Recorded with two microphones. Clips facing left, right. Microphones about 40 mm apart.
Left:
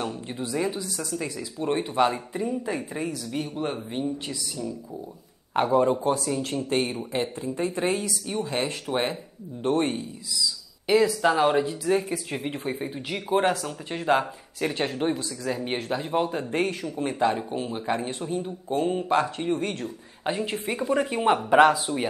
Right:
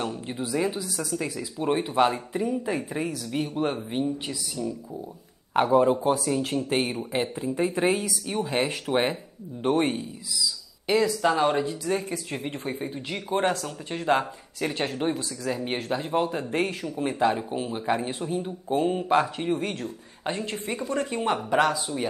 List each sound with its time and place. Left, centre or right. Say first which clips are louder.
0.0 s speech: right 1 dB; centre
10.9 s a man's voice: left 2 dB; centre